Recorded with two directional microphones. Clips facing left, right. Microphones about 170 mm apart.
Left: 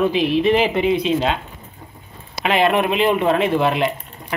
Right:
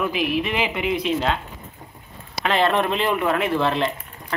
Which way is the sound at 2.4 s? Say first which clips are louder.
Left 3 dB; 15° left (ahead or behind).